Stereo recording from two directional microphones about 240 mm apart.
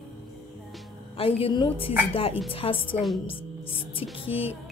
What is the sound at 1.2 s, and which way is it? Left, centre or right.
Music, left.